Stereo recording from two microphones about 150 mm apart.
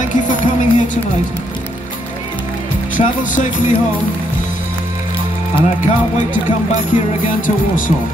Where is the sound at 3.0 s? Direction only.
55° left (ahead or behind).